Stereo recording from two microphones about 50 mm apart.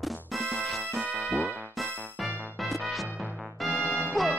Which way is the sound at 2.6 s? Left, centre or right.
Centre.